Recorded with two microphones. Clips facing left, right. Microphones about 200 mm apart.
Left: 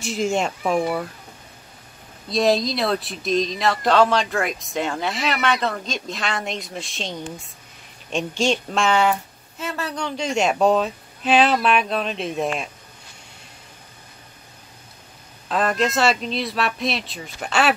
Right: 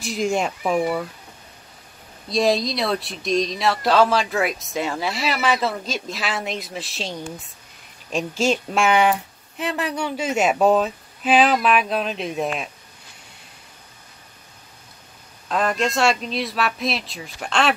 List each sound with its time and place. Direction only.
0.0 s speech: centre (ahead or behind)
2.2 s speech: centre (ahead or behind)
15.4 s speech: centre (ahead or behind)